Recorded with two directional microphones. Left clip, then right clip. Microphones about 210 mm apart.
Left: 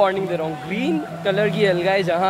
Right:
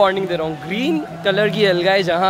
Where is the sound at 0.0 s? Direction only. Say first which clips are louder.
Right 3 dB; 25° right (ahead or behind).